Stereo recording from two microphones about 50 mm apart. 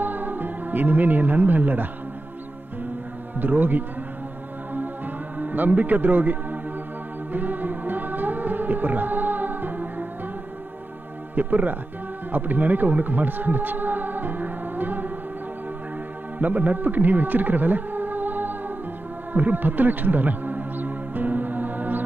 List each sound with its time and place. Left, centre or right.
0.0 s speech: right
3.3 s a man's voice: right
4.7 s music: right
11.3 s a man's voice: right
12.3 s music: right
16.3 s speech: right
19.3 s music: right